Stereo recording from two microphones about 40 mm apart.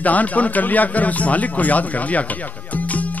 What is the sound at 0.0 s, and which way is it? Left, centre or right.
Speech, left.